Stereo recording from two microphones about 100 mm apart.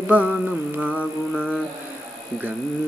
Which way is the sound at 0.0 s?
15° right (ahead or behind).